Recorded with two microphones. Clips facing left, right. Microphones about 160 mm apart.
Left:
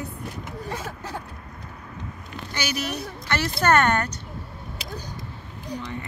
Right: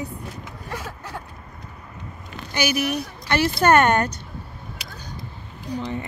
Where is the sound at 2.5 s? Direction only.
10° right (ahead or behind).